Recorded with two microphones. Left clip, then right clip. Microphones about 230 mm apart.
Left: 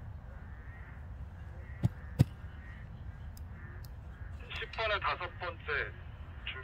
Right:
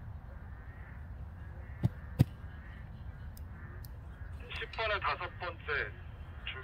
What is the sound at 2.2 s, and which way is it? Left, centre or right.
Caw, left.